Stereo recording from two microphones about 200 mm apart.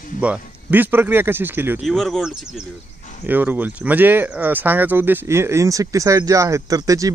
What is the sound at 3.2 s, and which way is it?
Speech, 10° right (ahead or behind).